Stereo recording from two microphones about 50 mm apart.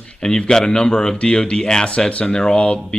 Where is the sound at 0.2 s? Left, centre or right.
Centre.